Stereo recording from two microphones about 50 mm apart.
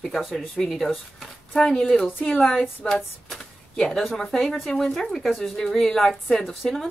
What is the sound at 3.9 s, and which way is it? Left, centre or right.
Speech, centre.